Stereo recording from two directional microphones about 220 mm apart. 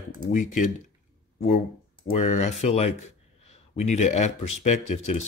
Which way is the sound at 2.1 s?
35° left (ahead or behind).